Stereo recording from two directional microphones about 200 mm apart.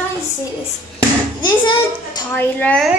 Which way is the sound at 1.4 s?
20° left (ahead or behind).